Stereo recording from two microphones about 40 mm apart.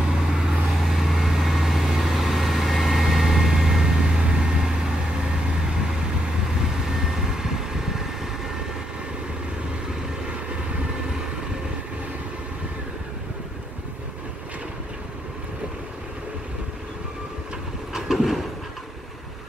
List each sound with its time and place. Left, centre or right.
0.1 s vehicle: centre
17.9 s train: centre